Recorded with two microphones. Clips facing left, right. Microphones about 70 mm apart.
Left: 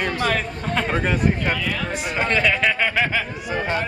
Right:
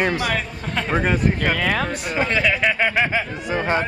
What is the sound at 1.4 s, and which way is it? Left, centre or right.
Speech, right.